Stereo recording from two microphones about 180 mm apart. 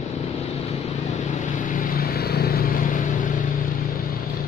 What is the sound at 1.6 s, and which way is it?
Vehicle, 50° left (ahead or behind).